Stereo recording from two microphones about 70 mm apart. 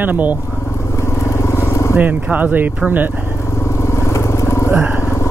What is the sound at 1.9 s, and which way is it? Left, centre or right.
Speech, right.